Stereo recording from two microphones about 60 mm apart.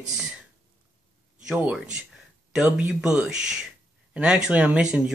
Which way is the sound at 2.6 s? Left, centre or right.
Centre.